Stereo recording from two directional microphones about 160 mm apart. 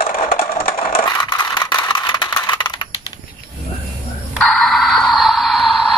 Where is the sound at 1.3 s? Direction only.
25° left (ahead or behind).